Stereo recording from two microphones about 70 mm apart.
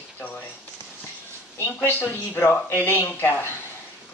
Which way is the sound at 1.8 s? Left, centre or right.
Left.